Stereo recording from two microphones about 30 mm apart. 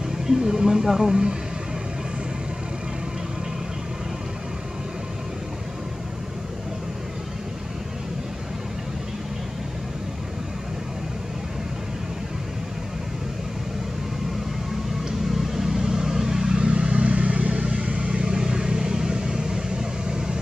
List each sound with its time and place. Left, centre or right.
0.4 s speech: right
15.0 s vehicle: centre
16.6 s vehicle: right
18.1 s vehicle: right